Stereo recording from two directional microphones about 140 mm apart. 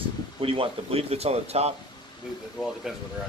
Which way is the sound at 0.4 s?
40° right (ahead or behind).